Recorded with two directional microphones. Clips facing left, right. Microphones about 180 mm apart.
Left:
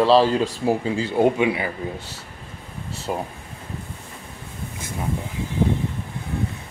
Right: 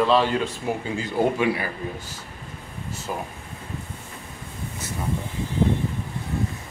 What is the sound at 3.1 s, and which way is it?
Speech, 25° left (ahead or behind).